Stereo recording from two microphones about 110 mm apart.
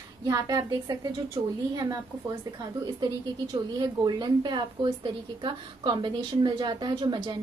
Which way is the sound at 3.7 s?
40° right (ahead or behind).